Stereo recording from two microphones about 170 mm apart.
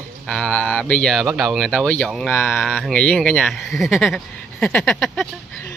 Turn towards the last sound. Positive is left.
turn(degrees=5)  # may be behind; listen again after turning